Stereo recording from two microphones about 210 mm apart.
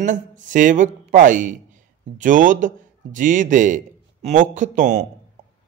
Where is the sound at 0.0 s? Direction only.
40° right (ahead or behind).